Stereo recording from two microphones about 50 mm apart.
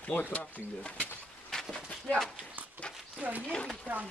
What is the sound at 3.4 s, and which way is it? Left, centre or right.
Speech, centre.